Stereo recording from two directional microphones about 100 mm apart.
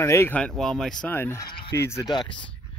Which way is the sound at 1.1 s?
25° left (ahead or behind).